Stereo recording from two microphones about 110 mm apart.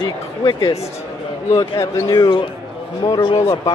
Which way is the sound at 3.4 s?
30° left (ahead or behind).